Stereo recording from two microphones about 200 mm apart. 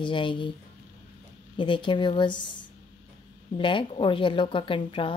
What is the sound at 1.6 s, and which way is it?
Speech, 25° left (ahead or behind).